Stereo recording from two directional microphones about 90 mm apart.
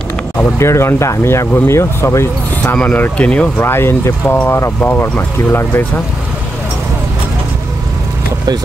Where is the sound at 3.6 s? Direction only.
25° left (ahead or behind).